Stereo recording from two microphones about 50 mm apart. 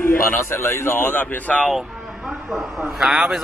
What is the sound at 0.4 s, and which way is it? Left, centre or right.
Speech, left.